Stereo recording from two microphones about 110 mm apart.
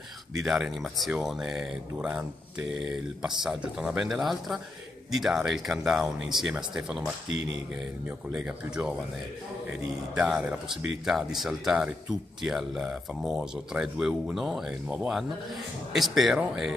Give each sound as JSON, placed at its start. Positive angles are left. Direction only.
{"t": 0.4, "sound": "speech", "side_deg": -5}
{"t": 8.3, "sound": "speech", "side_deg": -5}